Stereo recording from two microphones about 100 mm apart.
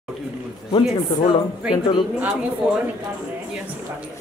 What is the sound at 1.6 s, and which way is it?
Speech, 10° right (ahead or behind).